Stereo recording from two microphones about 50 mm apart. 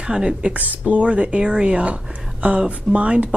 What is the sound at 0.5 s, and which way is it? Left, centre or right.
Speech, right.